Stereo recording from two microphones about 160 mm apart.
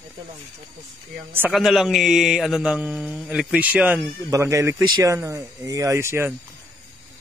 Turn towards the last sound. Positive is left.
turn(degrees=-15)  # may be behind; listen again after turning